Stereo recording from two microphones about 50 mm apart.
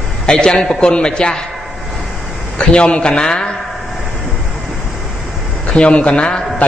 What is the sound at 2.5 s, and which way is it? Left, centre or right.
Speech, left.